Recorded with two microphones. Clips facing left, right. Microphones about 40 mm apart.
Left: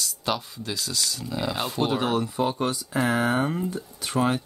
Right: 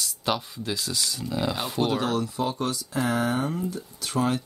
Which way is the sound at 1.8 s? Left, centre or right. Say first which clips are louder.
Left 1 dB; centre.